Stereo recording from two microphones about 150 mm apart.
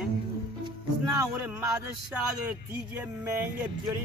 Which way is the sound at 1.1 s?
15° right (ahead or behind).